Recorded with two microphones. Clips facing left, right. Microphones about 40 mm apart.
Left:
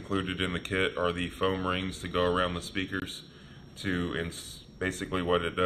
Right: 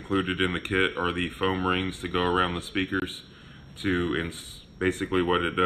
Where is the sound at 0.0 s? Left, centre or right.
Right.